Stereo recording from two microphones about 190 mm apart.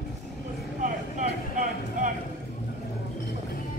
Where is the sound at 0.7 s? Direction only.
40° right (ahead or behind).